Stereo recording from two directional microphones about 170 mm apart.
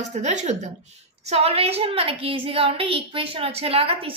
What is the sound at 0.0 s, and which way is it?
A woman's voice, 45° right (ahead or behind).